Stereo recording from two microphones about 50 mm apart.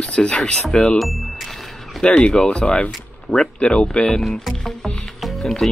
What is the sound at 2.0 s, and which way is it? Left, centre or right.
Speech, left.